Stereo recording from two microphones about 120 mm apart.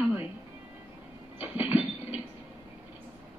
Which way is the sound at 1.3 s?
15° right (ahead or behind).